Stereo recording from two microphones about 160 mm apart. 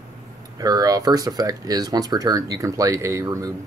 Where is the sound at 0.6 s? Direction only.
25° right (ahead or behind).